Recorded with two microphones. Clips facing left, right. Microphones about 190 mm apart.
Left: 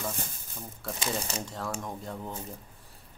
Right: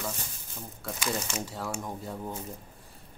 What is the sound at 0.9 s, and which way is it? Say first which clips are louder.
Speech: right 1 dB; 30° left (ahead or behind).